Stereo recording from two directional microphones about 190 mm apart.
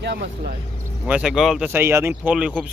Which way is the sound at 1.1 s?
Centre (ahead or behind).